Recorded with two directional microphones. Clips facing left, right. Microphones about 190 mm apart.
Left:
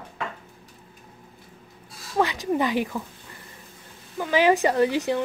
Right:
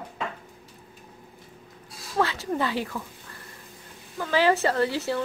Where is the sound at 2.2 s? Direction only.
15° left (ahead or behind).